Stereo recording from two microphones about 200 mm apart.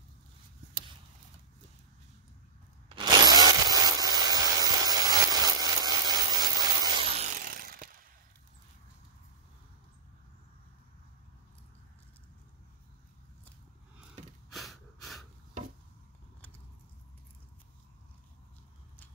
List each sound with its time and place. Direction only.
2.9 s wood: 20° right (ahead or behind); by 8.0 s 45° right (ahead or behind)
14.5 s gasp: centre (ahead or behind)
16.3 s a sound: 10° left (ahead or behind)